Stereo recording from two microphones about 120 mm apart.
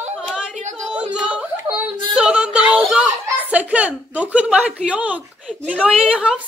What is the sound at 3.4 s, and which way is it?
A woman's voice, 15° right (ahead or behind).